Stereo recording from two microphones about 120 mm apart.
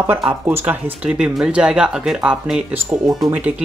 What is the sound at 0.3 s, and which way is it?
Speech, 20° right (ahead or behind).